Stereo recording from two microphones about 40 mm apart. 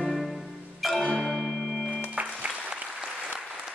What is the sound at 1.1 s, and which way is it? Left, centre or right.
Music, centre.